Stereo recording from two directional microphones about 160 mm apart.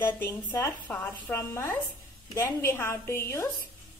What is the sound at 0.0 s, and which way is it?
A woman's voice, 15° left (ahead or behind).